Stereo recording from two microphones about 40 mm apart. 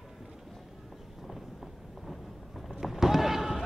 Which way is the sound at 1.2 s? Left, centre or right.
Centre.